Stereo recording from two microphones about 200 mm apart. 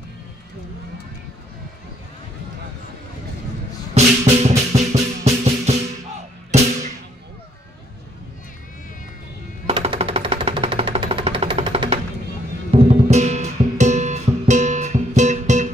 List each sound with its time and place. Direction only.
4.0 s music: 35° right (ahead or behind)
6.5 s a sound: 35° right (ahead or behind)
9.7 s music: 30° right (ahead or behind)